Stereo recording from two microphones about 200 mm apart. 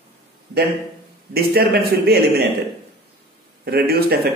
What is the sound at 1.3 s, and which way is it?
A man's voice, 50° right (ahead or behind).